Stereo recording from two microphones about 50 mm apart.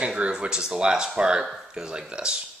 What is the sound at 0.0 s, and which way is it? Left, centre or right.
Speech, centre.